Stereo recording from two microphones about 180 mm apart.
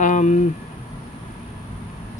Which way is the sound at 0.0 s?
45° left (ahead or behind).